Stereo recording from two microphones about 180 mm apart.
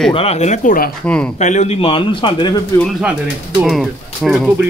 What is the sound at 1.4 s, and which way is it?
A man's voice, 40° left (ahead or behind).